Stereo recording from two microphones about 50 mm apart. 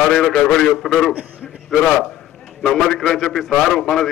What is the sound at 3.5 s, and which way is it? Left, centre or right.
Speech, centre.